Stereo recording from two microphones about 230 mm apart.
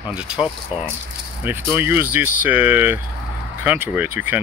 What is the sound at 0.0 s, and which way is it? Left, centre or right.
Speech, centre.